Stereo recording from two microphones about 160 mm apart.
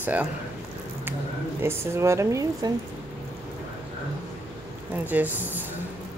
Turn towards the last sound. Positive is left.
turn(degrees=-10)  # may be behind; listen again after turning